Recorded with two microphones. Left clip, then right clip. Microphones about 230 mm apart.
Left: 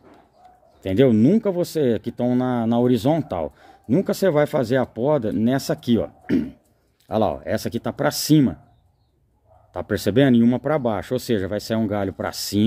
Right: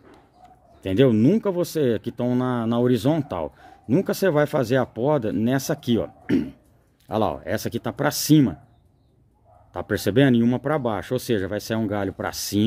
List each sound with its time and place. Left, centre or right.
0.8 s speech: centre
9.7 s speech: centre